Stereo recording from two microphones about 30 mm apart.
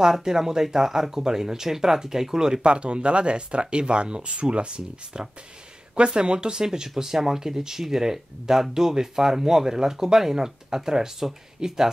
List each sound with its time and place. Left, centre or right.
0.0 s speech: right
2.6 s speech: right; by 11.9 s centre